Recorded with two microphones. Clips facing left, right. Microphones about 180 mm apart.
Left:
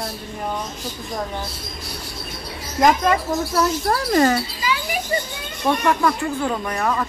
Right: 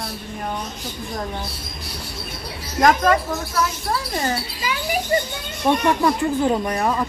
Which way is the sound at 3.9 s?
75° left (ahead or behind).